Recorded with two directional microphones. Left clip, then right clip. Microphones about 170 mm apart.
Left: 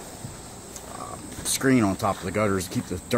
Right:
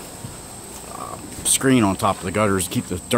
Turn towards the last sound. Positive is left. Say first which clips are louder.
# right 5 dB
turn(degrees=-10)  # may be behind; listen again after turning